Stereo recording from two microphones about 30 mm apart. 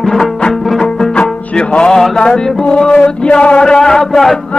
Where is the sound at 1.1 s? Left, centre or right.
Left.